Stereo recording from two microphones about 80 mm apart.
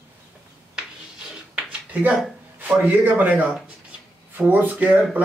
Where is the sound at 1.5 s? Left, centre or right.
Centre.